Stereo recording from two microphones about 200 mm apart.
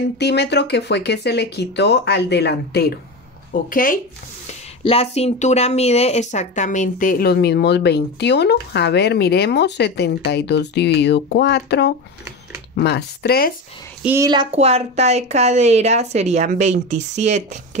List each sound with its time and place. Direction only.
0.2 s speech: 55° left (ahead or behind)
4.5 s speech: 30° left (ahead or behind); by 13.5 s 50° left (ahead or behind)
14.0 s a woman's voice: 15° right (ahead or behind); by 17.6 s 35° right (ahead or behind)